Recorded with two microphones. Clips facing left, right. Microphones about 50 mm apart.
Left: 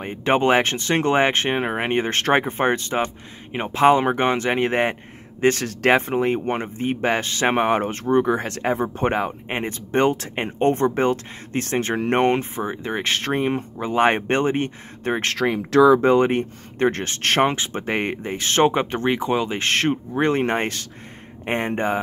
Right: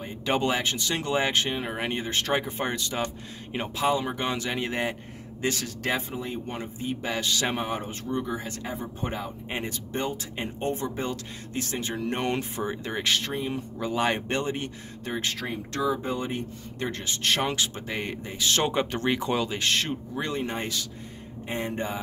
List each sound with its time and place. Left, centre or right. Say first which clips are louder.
0.0 s speech: left 7 dB; left
3.8 s speech: left 10 dB; left
9.5 s speech: left 7 dB; left
12.6 s speech: left 5 dB; left
13.0 s speech: left 6 dB; left
13.7 s speech: left 7 dB; left
15.3 s speech: left 14 dB; left
19.5 s speech: left 6 dB; left